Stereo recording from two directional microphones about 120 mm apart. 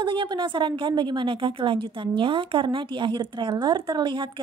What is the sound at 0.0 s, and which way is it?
A woman's voice, 40° right (ahead or behind).